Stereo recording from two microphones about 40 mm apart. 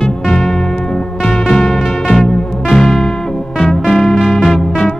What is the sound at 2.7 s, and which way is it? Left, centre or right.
Music, centre.